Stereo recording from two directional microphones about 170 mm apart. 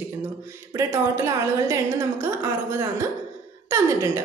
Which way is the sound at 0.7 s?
15° right (ahead or behind).